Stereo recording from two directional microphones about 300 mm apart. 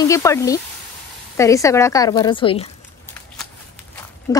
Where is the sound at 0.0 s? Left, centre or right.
Centre.